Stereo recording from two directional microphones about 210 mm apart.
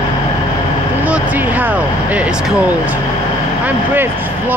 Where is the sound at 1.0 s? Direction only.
5° right (ahead or behind).